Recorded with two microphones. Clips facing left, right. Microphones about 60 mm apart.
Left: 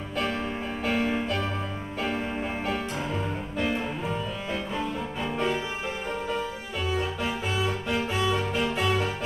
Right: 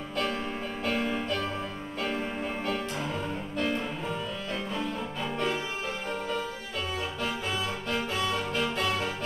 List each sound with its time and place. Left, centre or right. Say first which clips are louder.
0.8 s music: left 3 dB; centre
6.9 s music: left 5 dB; centre